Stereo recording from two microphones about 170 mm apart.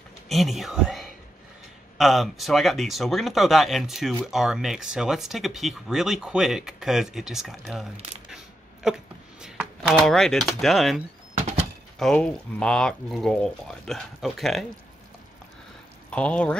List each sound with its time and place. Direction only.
0.3 s speech: centre (ahead or behind)
8.8 s speech: 5° right (ahead or behind)
11.3 s a sound: 40° right (ahead or behind)
12.0 s speech: 5° left (ahead or behind)
16.1 s speech: 5° left (ahead or behind)